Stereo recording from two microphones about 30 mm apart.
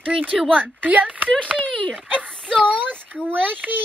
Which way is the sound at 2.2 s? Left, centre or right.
Left.